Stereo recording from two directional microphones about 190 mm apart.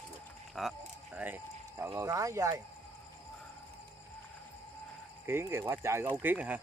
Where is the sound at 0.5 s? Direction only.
Centre (ahead or behind); by 2.6 s 15° right (ahead or behind).